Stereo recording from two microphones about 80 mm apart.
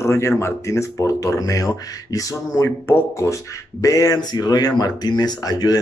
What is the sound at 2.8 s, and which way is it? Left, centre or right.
Speech, left.